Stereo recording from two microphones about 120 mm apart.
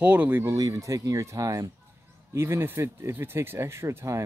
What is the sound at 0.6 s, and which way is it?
Speech, 30° right (ahead or behind).